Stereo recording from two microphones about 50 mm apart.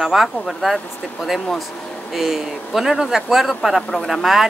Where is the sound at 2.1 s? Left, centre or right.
Centre.